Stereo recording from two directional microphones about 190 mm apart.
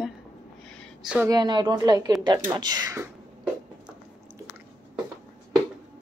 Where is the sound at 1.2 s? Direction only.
20° right (ahead or behind).